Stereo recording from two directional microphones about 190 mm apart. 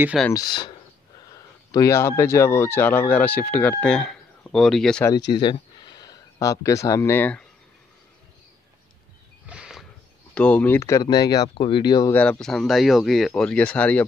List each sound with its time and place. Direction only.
0.0 s speech: 5° right (ahead or behind)
0.3 s speech: 20° left (ahead or behind); by 5.0 s centre (ahead or behind)
5.3 s speech: 25° left (ahead or behind)
9.5 s a sound: 5° right (ahead or behind)
10.3 s speech: 5° left (ahead or behind); by 12.1 s 25° left (ahead or behind)
12.1 s speech: 5° left (ahead or behind)